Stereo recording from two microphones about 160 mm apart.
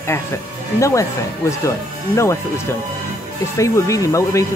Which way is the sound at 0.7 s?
20° left (ahead or behind).